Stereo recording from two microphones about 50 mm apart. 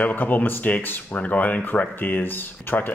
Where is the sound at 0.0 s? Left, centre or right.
Left.